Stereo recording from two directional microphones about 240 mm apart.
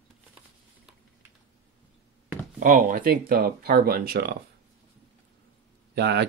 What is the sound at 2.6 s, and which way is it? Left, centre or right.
Speech, right.